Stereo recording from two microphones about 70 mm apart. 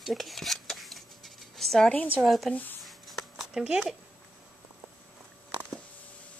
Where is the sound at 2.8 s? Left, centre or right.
Centre.